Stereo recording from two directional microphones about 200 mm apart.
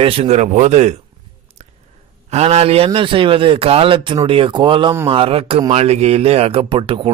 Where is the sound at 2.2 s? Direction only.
30° right (ahead or behind).